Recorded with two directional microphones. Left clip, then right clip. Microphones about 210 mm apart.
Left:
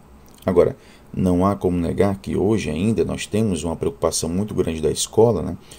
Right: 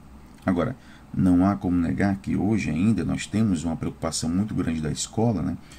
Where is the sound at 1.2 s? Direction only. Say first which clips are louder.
Left 3 dB; 25° left (ahead or behind).